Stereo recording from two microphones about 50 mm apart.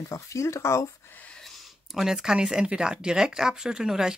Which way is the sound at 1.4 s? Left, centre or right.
Centre.